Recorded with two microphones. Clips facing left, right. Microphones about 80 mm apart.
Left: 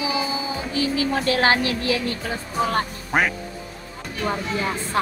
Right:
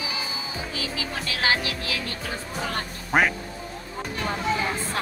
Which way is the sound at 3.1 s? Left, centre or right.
Centre.